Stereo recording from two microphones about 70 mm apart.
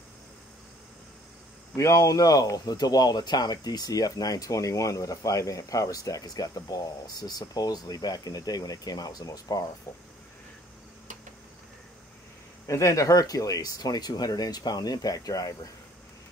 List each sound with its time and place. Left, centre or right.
1.8 s speech: left
12.6 s speech: left